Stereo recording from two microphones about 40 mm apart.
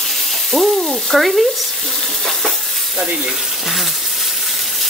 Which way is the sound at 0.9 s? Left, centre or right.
Centre.